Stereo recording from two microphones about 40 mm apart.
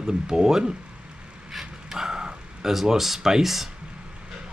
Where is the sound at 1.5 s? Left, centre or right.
Centre.